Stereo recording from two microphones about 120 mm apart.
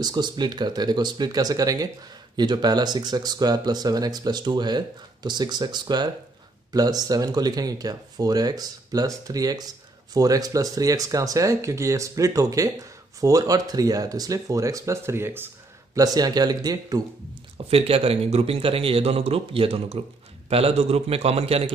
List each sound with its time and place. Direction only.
0.0 s speech: 35° right (ahead or behind); by 16.0 s 20° right (ahead or behind)
16.0 s speech: 30° right (ahead or behind)
17.6 s a man's voice: 55° right (ahead or behind)